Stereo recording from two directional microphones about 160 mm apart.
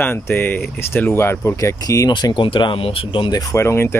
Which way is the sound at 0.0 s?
10° left (ahead or behind).